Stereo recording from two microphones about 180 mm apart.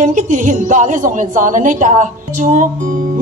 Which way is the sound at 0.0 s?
45° right (ahead or behind).